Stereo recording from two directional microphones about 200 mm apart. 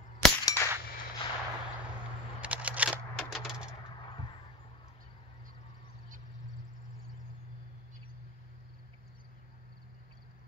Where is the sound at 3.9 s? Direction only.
25° left (ahead or behind).